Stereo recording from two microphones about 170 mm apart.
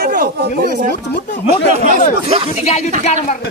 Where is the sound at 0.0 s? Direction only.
60° right (ahead or behind).